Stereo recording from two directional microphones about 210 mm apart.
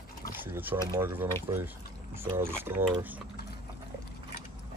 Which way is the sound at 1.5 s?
20° right (ahead or behind).